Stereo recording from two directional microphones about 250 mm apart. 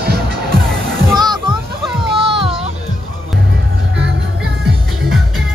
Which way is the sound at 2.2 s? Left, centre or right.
Right.